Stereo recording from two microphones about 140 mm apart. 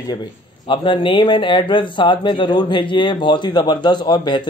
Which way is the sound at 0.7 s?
35° left (ahead or behind).